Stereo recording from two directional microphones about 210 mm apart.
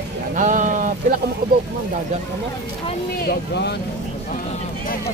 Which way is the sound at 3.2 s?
50° left (ahead or behind).